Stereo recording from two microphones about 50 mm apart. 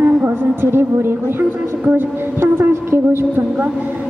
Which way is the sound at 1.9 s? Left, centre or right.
Right.